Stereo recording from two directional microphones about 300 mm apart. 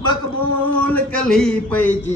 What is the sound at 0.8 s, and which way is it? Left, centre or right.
Speech, centre.